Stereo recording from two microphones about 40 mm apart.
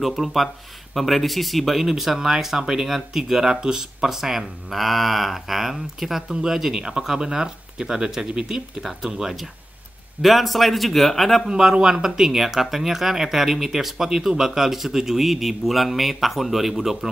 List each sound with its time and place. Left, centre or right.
0.0 s speech: centre
10.2 s speech: centre
11.4 s speech: centre